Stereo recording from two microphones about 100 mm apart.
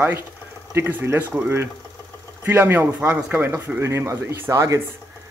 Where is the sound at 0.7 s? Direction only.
25° right (ahead or behind).